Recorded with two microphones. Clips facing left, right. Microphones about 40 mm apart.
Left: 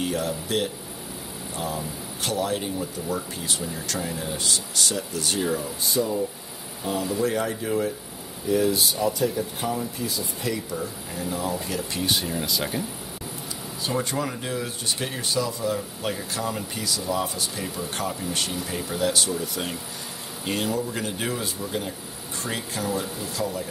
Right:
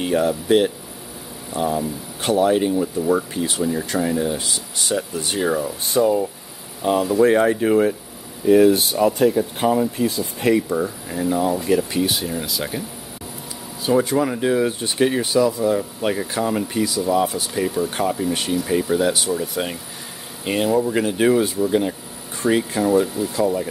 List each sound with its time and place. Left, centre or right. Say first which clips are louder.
0.0 s speech: right 7 dB; right
2.8 s speech: right 10 dB; right
3.4 s speech: right 8 dB; right
5.8 s speech: right 9 dB; right
11.1 s speech: right 8 dB; right
12.0 s speech: right 4 dB; centre
13.8 s speech: right 9 dB; centre
15.2 s speech: right 8 dB; centre